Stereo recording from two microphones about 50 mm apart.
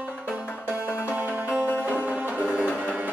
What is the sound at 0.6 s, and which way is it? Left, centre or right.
Music, right.